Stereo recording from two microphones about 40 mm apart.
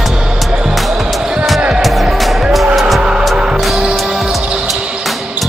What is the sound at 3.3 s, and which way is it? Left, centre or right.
Music, centre.